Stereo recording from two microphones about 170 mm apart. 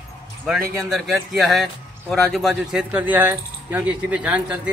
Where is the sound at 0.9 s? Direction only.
Centre (ahead or behind).